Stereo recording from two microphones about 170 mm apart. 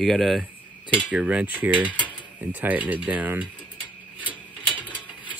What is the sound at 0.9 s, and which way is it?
Cutlery, 5° right (ahead or behind).